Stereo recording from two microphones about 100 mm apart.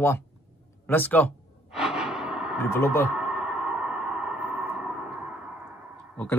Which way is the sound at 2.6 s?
30° left (ahead or behind).